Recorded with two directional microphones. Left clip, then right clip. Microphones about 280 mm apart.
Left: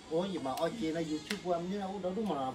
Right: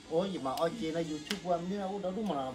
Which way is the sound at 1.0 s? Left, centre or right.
Centre.